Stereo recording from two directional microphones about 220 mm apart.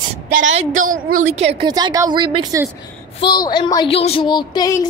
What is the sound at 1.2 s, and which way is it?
Speech, 30° right (ahead or behind).